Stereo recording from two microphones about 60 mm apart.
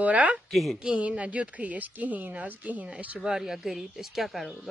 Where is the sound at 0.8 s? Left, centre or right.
Centre.